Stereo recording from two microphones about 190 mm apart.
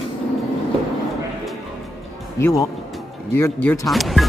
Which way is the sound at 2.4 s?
20° left (ahead or behind).